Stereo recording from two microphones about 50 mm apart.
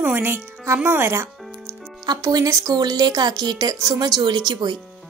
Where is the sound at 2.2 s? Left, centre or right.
Right.